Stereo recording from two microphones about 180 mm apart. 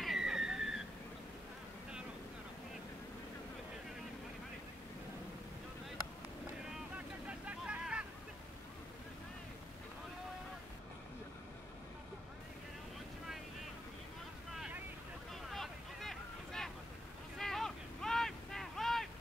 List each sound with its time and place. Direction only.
0.0 s a sound: centre (ahead or behind)
7.2 s vehicle: 5° right (ahead or behind)
14.5 s boat: centre (ahead or behind)
15.5 s vehicle: centre (ahead or behind)
17.4 s boat: centre (ahead or behind)